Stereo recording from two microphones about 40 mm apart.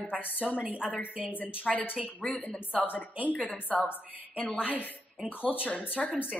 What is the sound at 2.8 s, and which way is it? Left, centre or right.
A woman's voice, left.